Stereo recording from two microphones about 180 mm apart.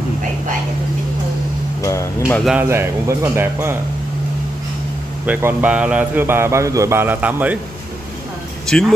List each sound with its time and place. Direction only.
1.8 s speech: 15° left (ahead or behind)
2.7 s speech: 15° right (ahead or behind)
5.2 s speech: 10° right (ahead or behind)
8.7 s speech: 5° left (ahead or behind)